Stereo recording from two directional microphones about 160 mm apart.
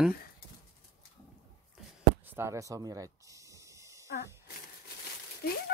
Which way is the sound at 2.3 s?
20° right (ahead or behind).